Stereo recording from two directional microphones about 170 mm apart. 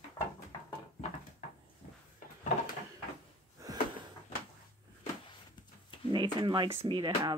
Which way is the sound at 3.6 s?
20° right (ahead or behind).